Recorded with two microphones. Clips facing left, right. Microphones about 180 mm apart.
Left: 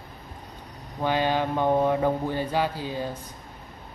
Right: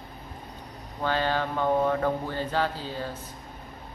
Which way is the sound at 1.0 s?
15° left (ahead or behind).